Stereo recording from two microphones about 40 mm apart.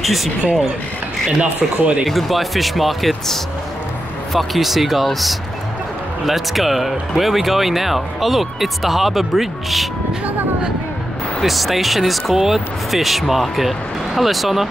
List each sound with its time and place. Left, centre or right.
0.0 s speech: centre
1.4 s speech: right
2.0 s speech: centre
11.4 s speech: centre